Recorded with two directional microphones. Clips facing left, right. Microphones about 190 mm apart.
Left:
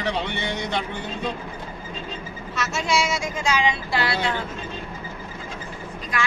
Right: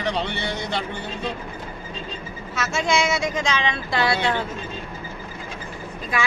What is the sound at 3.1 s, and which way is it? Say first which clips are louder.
Speech: right 4 dB; 65° right (ahead or behind).